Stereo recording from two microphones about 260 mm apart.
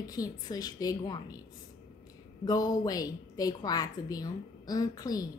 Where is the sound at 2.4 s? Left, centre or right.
Centre.